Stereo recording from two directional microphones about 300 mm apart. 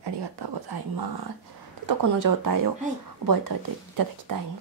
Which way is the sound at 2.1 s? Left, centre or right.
Right.